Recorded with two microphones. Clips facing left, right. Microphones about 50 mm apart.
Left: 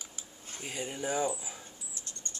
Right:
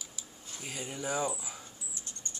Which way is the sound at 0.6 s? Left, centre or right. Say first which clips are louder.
Left 2 dB; left.